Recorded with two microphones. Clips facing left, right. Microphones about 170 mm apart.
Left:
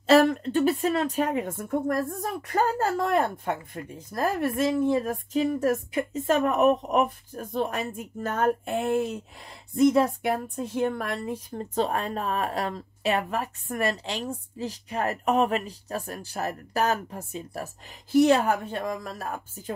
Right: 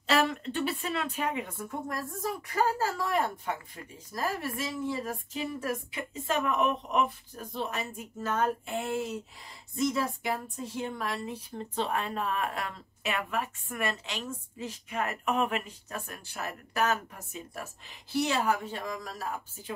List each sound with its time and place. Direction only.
0.0 s a woman's voice: 40° left (ahead or behind)
18.1 s speech: 50° left (ahead or behind)